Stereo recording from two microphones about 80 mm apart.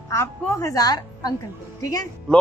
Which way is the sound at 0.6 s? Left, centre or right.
Left.